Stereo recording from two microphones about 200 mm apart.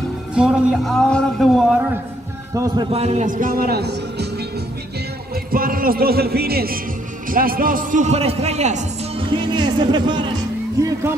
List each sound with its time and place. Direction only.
0.3 s a man's voice: 5° right (ahead or behind)
2.5 s speech: 15° right (ahead or behind)
2.9 s speech: 35° right (ahead or behind); by 4.5 s 55° right (ahead or behind)
5.3 s a man's voice: 45° right (ahead or behind); by 10.3 s 25° right (ahead or behind)